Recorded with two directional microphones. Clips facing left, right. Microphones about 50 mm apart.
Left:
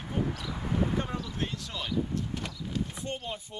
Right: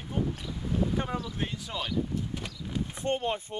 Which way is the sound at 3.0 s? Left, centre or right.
Right.